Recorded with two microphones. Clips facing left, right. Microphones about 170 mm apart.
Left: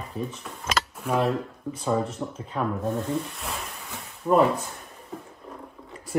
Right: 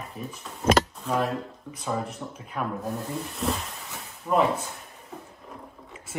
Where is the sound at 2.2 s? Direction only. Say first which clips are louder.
Left 5 dB; 20° left (ahead or behind).